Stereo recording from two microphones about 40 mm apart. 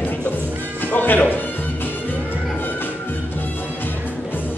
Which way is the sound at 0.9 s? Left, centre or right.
Left.